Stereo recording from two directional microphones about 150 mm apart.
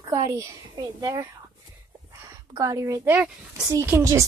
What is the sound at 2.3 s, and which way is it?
A woman's voice, 20° right (ahead or behind).